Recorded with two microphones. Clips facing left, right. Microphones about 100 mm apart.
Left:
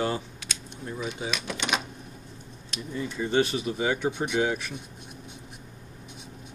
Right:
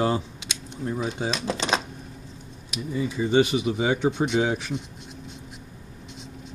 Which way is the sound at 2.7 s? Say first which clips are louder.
Right 5 dB; 5° right (ahead or behind).